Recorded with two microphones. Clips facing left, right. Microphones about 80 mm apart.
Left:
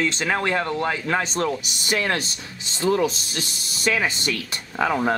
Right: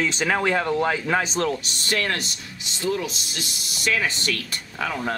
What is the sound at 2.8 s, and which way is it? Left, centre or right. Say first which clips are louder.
Speech: left 5 dB; left.